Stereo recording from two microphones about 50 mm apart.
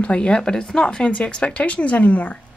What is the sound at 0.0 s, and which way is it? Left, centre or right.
Speech, left.